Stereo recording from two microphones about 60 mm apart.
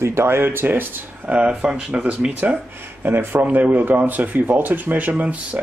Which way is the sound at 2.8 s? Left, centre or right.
Right.